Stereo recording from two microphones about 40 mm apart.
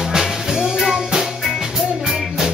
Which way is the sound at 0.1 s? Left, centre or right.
Centre.